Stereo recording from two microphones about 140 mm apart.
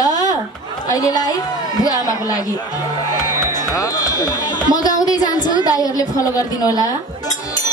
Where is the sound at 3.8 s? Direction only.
25° left (ahead or behind).